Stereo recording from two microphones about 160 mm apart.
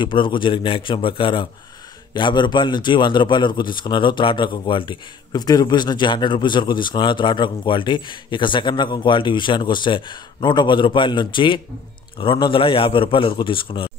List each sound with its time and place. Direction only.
0.0 s a man's voice: 30° left (ahead or behind)